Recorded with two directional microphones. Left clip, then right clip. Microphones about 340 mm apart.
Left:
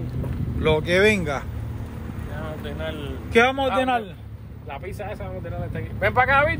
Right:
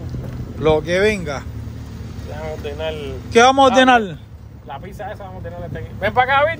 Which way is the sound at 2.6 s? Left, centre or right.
Right.